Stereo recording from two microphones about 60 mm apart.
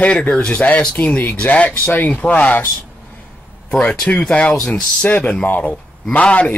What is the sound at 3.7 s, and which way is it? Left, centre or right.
Speech, centre.